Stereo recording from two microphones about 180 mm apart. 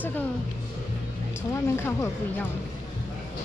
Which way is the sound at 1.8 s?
15° left (ahead or behind).